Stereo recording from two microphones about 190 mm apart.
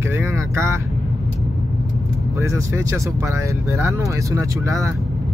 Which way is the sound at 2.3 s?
15° right (ahead or behind).